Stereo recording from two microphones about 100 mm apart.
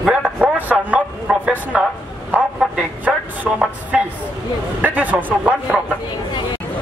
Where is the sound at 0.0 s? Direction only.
10° right (ahead or behind).